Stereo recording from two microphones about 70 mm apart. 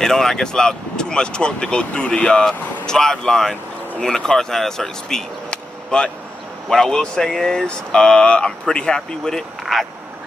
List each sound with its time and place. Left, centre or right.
0.0 s speech: centre